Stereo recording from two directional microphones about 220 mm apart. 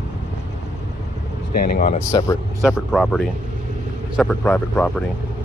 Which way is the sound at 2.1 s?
15° left (ahead or behind).